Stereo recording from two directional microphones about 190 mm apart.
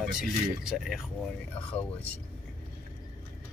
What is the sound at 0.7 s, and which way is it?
Speech, centre (ahead or behind).